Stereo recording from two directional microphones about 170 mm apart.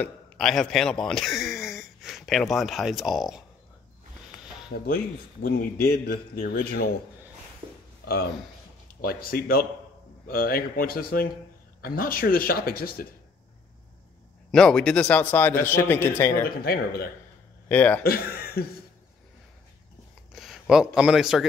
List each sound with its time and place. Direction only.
0.0 s speech: centre (ahead or behind)
4.6 s a man's voice: 55° left (ahead or behind)
9.0 s a man's voice: 60° left (ahead or behind)
14.5 s speech: 5° left (ahead or behind)
16.4 s a man's voice: 65° left (ahead or behind)
17.6 s speech: 10° left (ahead or behind)
18.0 s a man's voice: 60° left (ahead or behind)
20.3 s speech: centre (ahead or behind)